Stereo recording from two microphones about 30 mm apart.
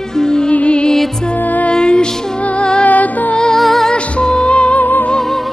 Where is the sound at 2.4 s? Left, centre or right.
Left.